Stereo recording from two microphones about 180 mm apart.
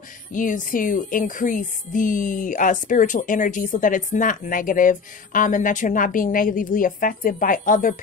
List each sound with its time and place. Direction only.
0.3 s music: 45° left (ahead or behind)